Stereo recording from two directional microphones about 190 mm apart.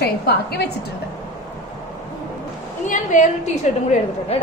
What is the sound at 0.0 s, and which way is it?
Speech, 55° left (ahead or behind).